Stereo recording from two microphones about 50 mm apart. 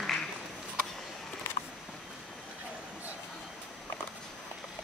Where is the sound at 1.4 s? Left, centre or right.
Left.